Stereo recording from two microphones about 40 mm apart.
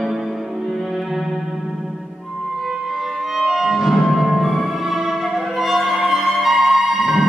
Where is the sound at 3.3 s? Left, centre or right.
Centre.